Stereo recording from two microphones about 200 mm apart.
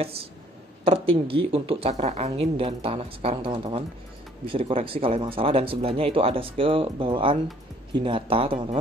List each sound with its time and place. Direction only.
0.8 s speech: 25° right (ahead or behind)